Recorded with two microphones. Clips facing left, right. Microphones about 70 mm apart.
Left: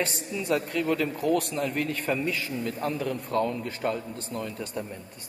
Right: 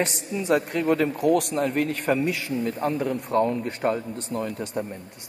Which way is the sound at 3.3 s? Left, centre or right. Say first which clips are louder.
Right 5 dB; right.